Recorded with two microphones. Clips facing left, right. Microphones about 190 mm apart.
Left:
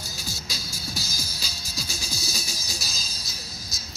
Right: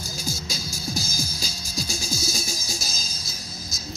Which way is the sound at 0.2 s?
45° right (ahead or behind).